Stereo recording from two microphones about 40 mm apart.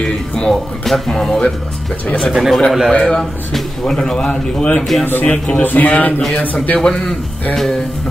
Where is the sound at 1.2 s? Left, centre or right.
Centre.